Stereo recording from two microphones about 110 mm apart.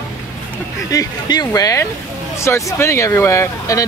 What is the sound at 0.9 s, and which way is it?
Speech, 35° left (ahead or behind).